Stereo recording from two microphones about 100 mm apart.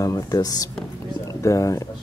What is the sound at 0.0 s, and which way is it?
Speech, 35° left (ahead or behind).